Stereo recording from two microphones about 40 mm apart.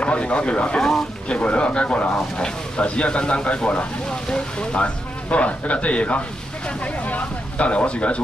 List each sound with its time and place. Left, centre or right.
0.0 s speech: left
4.1 s speech: left
4.7 s speech: left